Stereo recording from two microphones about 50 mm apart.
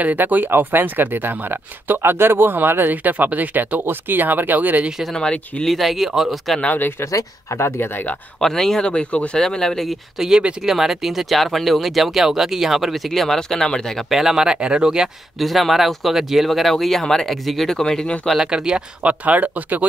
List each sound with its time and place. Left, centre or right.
0.0 s speech: right
5.1 s speech: centre
5.7 s speech: centre
7.0 s speech: left
7.9 s speech: left
8.4 s speech: centre
9.4 s speech: centre
10.1 s speech: centre
14.1 s speech: centre
15.3 s speech: centre
18.4 s speech: centre
19.0 s speech: right